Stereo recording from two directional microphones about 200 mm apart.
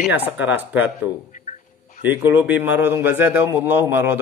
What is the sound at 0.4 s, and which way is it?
Speech, 10° right (ahead or behind).